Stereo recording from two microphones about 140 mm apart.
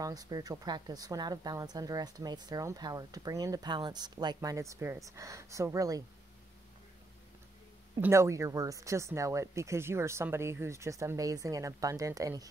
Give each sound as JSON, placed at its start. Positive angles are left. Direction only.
{"t": 0.0, "sound": "speech", "side_deg": -25}
{"t": 8.0, "sound": "speech", "side_deg": -20}